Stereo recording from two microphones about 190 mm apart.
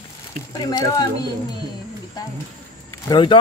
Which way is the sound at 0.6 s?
20° left (ahead or behind).